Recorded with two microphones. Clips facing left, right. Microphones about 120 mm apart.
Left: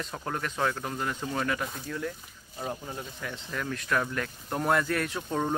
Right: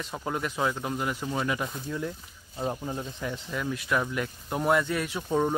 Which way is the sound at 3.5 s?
10° right (ahead or behind).